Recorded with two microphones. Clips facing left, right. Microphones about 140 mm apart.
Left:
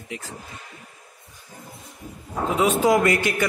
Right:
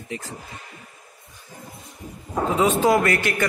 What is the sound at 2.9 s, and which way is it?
Speech, 20° left (ahead or behind).